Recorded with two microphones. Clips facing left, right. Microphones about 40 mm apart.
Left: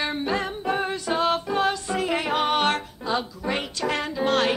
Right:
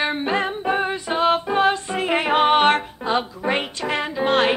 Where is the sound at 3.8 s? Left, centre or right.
Right.